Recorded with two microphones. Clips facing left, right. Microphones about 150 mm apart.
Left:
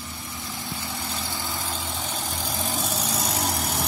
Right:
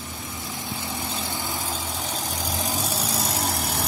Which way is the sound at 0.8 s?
20° right (ahead or behind).